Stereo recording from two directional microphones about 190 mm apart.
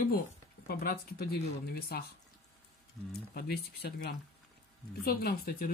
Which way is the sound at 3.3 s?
55° left (ahead or behind).